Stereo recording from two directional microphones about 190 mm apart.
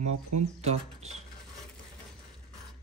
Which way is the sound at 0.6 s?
35° right (ahead or behind).